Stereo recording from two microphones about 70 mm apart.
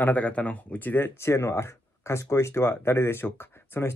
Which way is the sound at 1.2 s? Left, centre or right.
Left.